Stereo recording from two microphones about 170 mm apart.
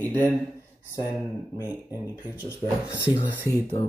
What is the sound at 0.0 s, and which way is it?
Speech, 10° left (ahead or behind).